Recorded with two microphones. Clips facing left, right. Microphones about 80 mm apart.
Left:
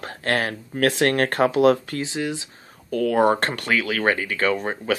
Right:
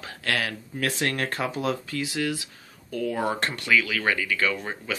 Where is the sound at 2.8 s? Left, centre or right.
Left.